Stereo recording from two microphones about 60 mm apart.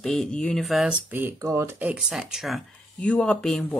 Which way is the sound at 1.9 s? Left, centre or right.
Centre.